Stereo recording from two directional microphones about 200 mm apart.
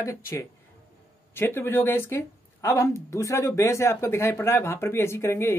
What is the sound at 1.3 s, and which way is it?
Speech, 10° left (ahead or behind).